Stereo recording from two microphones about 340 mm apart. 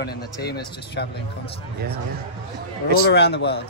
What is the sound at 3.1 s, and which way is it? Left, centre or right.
Speech, left.